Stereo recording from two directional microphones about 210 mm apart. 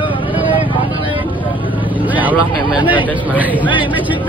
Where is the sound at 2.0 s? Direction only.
5° right (ahead or behind).